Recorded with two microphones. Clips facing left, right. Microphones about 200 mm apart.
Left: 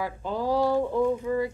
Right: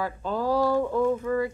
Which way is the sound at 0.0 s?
15° left (ahead or behind).